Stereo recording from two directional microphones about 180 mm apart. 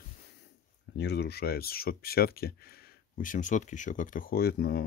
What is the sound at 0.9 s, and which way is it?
Speech, 70° left (ahead or behind).